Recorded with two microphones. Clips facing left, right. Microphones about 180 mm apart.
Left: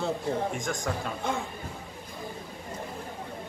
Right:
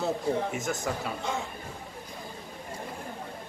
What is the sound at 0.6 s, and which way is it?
Speech, 5° right (ahead or behind).